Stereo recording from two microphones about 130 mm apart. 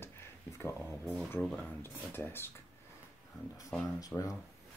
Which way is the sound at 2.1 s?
15° left (ahead or behind).